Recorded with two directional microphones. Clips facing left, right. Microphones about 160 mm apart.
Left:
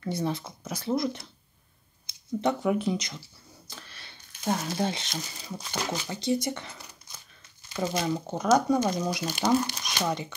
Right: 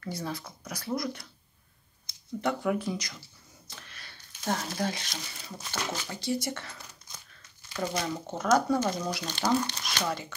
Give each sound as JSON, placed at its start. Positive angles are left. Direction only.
{"t": 0.0, "sound": "speech", "side_deg": 25}
{"t": 2.4, "sound": "speech", "side_deg": 20}
{"t": 3.9, "sound": "a sound", "side_deg": 25}
{"t": 4.7, "sound": "speech", "side_deg": 25}